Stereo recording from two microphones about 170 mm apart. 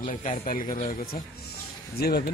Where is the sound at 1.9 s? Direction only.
70° left (ahead or behind).